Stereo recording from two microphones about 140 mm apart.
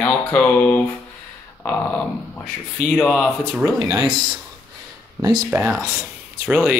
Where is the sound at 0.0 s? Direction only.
10° left (ahead or behind).